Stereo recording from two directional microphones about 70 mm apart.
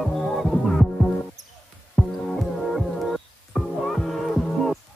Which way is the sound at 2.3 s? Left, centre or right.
Centre.